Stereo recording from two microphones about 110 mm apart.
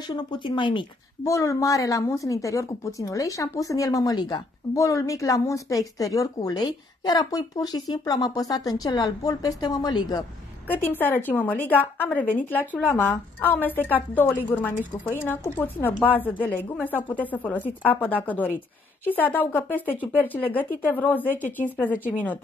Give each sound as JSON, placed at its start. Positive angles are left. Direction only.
{"t": 0.0, "sound": "speech", "side_deg": 40}
{"t": 1.2, "sound": "a woman's voice", "side_deg": 30}
{"t": 10.7, "sound": "a woman's voice", "side_deg": 15}